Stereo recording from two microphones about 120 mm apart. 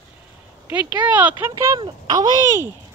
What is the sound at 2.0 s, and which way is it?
Speech, 35° right (ahead or behind).